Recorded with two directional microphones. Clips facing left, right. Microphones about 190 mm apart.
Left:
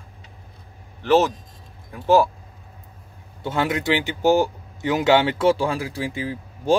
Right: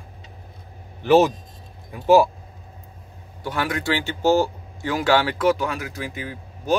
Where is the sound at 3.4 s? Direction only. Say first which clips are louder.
Left 3 dB; 25° left (ahead or behind).